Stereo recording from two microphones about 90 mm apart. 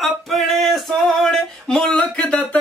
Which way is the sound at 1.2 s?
5° left (ahead or behind).